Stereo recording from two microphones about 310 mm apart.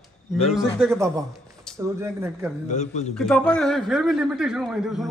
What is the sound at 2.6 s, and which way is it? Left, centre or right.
Speech, left.